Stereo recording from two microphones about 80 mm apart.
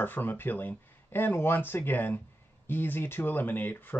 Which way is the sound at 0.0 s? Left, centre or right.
Left.